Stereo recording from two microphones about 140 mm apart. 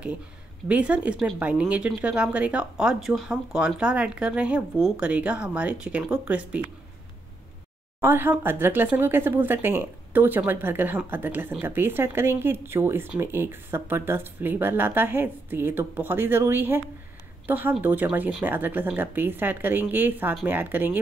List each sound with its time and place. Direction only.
0.7 s a woman's voice: 10° right (ahead or behind)
8.0 s a woman's voice: 15° right (ahead or behind)